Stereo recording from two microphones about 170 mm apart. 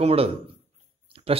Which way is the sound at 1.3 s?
35° right (ahead or behind).